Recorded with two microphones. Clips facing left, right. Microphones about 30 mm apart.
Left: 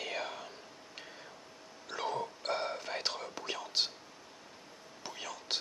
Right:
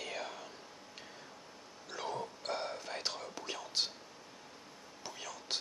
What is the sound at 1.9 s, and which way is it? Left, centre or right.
Whispering, centre.